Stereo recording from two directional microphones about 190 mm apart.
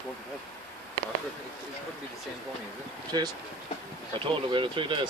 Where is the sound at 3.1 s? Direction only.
20° right (ahead or behind).